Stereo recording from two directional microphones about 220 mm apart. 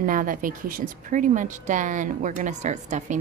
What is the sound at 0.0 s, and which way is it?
Speech, 40° right (ahead or behind).